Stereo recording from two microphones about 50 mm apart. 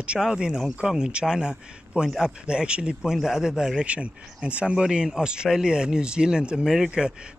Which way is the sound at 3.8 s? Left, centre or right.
Right.